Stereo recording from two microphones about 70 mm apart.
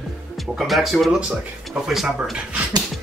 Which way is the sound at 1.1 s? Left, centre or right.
Centre.